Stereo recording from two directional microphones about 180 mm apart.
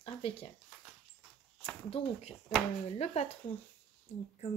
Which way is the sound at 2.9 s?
35° left (ahead or behind).